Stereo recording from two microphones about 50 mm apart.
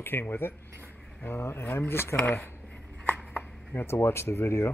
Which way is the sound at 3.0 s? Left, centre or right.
Left.